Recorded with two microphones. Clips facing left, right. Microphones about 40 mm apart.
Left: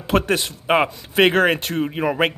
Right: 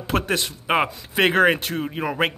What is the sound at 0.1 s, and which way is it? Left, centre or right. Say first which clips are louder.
Speech: left 4 dB; centre.